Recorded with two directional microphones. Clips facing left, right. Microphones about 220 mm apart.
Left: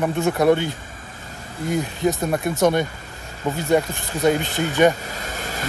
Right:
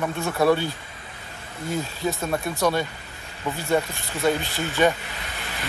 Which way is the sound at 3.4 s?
40° left (ahead or behind).